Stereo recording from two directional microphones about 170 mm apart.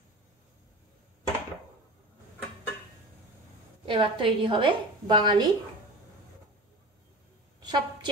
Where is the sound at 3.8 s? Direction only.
30° right (ahead or behind).